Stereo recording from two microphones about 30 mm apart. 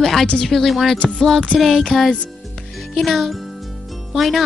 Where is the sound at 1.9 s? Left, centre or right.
Centre.